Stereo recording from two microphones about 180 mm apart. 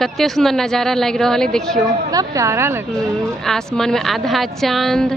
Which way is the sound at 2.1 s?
20° right (ahead or behind).